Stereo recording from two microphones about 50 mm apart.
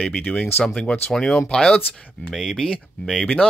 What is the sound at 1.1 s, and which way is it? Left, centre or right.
Speech, centre.